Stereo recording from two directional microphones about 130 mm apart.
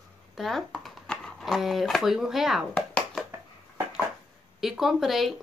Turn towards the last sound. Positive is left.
turn(degrees=0)  # may be behind; listen again after turning